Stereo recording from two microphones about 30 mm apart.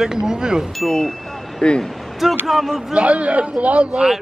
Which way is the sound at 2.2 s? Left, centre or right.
Centre.